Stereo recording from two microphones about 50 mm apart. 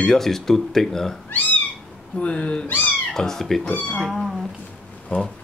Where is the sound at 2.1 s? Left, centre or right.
Left.